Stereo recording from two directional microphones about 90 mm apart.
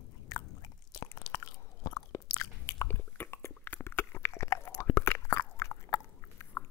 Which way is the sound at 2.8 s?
25° left (ahead or behind).